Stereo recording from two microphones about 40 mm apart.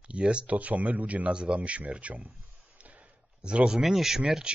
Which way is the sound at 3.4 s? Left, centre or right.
Right.